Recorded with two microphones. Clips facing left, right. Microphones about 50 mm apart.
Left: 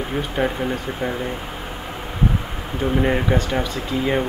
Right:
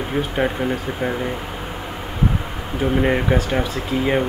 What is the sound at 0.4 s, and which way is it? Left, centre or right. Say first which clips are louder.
Speech: even; centre.